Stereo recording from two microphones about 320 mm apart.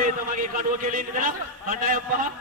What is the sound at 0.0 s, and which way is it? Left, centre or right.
A man's voice, right.